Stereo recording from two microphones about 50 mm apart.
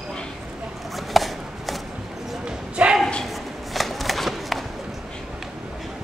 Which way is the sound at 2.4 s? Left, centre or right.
Right.